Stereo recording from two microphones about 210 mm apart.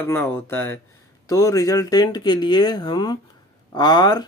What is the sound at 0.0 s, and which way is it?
Speech, 10° left (ahead or behind).